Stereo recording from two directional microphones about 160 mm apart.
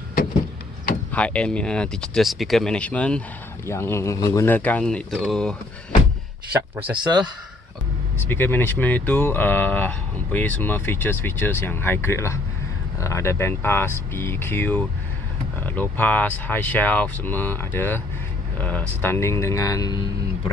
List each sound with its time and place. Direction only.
1.1 s speech: 5° left (ahead or behind)
6.8 s speech: 10° right (ahead or behind)
8.3 s speech: 10° left (ahead or behind)